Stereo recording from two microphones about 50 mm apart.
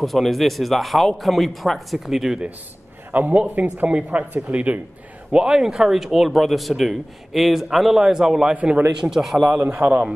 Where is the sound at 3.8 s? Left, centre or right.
Right.